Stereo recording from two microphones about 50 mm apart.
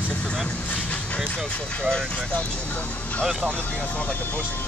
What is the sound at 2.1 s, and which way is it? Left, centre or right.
Speech, left.